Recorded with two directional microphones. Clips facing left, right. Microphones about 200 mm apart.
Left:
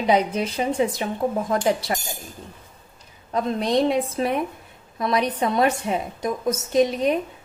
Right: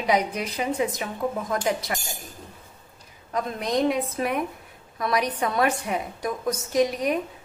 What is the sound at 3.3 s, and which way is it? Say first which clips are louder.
A woman's voice: left 4 dB; 30° left (ahead or behind).